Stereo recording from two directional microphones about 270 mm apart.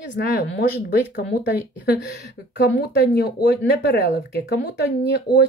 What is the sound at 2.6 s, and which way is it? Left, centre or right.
Speech, left.